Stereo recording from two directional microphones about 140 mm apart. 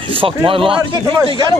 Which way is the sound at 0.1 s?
40° right (ahead or behind).